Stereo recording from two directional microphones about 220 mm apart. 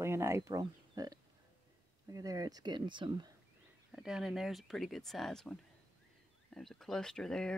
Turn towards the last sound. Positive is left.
turn(degrees=5)  # may be behind; listen again after turning